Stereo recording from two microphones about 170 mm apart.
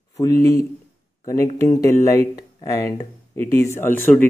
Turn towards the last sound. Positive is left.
turn(degrees=10)  # may be behind; listen again after turning